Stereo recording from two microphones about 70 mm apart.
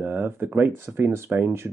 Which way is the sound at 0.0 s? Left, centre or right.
Right.